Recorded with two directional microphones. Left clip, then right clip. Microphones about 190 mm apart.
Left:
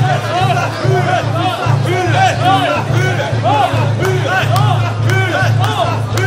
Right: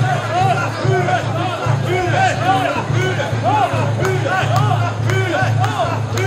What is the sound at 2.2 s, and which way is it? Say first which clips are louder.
Music: left 5 dB; 35° left (ahead or behind).